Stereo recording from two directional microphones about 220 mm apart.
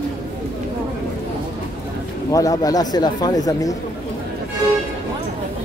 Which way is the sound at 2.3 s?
15° left (ahead or behind).